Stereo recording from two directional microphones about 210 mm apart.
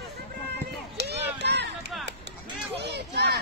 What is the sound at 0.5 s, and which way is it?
Run, 50° right (ahead or behind).